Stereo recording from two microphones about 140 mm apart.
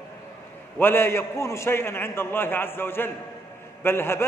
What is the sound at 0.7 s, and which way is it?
A man's voice, 15° left (ahead or behind).